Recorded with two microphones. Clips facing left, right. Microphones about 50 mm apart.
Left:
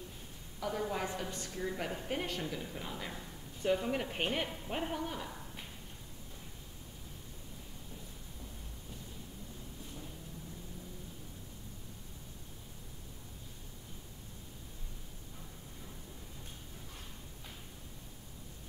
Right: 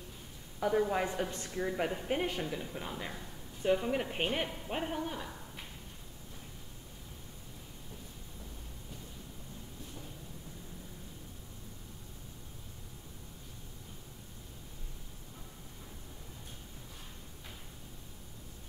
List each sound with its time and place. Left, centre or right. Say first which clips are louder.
0.6 s a woman's voice: right 6 dB; right
1.7 s a woman's voice: right 5 dB; centre